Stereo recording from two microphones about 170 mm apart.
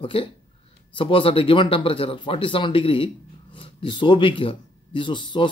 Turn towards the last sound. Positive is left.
turn(degrees=30)  # may be behind; listen again after turning